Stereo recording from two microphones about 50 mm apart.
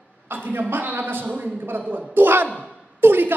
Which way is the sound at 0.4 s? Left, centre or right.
Right.